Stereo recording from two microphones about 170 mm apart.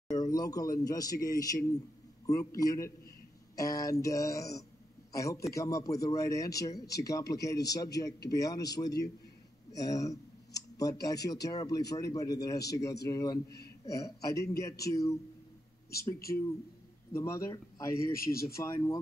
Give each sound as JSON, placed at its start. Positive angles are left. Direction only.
{"t": 0.1, "sound": "a man's voice", "side_deg": 20}
{"t": 16.3, "sound": "speech", "side_deg": 35}
{"t": 17.1, "sound": "a man's voice", "side_deg": 15}
{"t": 18.1, "sound": "speech", "side_deg": 60}
{"t": 18.5, "sound": "speech", "side_deg": 20}